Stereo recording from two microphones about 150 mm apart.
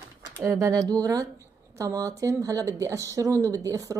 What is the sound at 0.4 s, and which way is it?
Speech, 20° right (ahead or behind).